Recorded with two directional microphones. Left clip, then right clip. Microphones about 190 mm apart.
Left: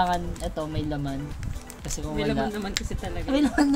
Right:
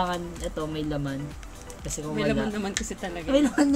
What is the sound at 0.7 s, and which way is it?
Speech, 15° left (ahead or behind).